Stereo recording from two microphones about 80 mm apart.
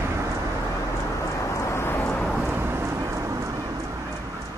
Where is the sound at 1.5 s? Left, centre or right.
Left.